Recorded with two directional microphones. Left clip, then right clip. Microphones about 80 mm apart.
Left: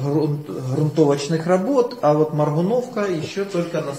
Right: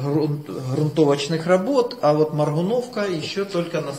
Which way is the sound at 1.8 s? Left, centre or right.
Right.